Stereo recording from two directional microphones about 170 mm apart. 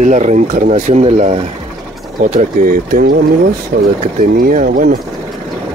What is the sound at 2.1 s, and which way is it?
Speech, 50° right (ahead or behind).